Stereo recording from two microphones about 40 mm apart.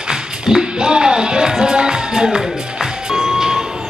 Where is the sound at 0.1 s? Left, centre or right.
Centre.